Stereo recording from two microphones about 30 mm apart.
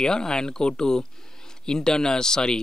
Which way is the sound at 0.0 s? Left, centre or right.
Left.